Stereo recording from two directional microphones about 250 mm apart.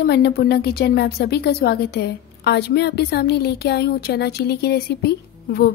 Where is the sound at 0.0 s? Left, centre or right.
Left.